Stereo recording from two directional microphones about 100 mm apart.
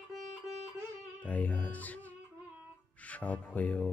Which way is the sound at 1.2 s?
15° left (ahead or behind).